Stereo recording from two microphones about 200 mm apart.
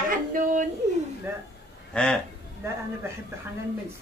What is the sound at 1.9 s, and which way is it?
Speech, 5° left (ahead or behind).